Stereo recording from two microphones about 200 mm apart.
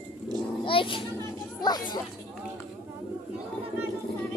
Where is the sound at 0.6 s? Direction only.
25° left (ahead or behind).